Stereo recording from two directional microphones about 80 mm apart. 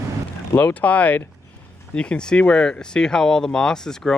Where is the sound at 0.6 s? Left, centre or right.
Centre.